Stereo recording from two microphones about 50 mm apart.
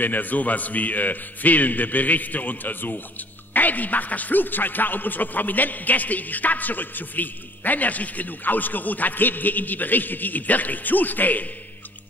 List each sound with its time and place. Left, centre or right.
0.0 s a man's voice: left